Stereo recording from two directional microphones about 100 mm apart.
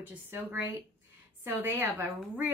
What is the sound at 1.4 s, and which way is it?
Speech, 20° right (ahead or behind).